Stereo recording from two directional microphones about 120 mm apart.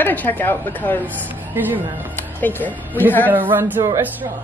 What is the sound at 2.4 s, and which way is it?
Speech, 15° left (ahead or behind).